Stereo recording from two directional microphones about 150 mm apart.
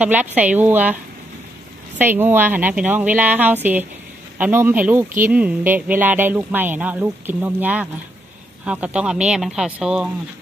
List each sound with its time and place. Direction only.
0.0 s a woman's voice: 10° right (ahead or behind)
2.0 s a woman's voice: 15° right (ahead or behind)